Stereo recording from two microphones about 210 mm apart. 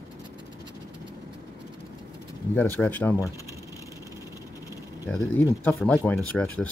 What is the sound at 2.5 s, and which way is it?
Speech, 10° left (ahead or behind).